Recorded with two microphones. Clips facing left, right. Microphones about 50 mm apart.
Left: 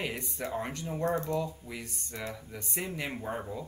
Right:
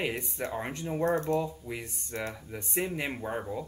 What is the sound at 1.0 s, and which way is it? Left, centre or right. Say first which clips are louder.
Typing: right 3 dB; right.